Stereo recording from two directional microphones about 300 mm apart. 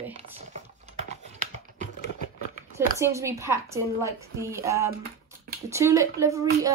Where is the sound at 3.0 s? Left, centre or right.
Centre.